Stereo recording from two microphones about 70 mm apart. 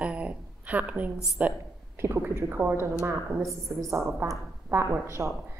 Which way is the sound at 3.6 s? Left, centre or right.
Right.